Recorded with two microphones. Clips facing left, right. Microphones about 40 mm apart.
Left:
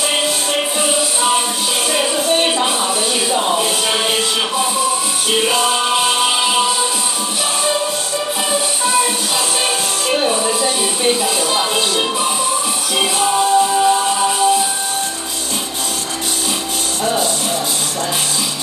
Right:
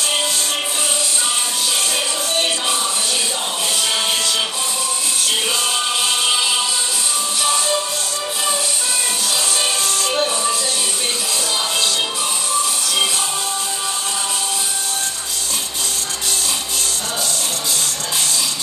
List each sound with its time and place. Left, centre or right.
2.0 s music: centre
3.3 s a sound: centre
5.3 s music: centre
10.0 s music: centre
13.0 s music: centre
17.0 s music: centre